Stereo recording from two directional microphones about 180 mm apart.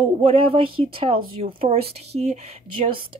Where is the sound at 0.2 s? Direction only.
30° right (ahead or behind).